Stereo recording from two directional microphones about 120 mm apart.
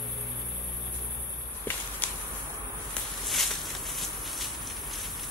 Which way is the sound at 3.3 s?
Centre (ahead or behind).